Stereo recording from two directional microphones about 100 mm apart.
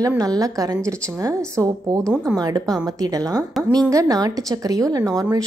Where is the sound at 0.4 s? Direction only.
35° right (ahead or behind).